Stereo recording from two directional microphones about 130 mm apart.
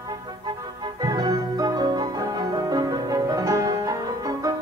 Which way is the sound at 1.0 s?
30° right (ahead or behind).